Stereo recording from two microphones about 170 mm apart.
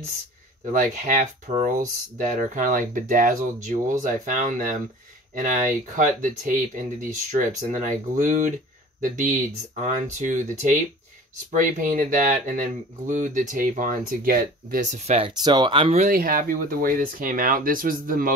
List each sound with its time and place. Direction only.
0.7 s speech: 50° right (ahead or behind)
16.1 s speech: 55° right (ahead or behind)